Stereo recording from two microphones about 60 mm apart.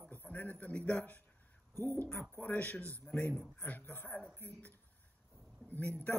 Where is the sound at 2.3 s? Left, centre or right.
Left.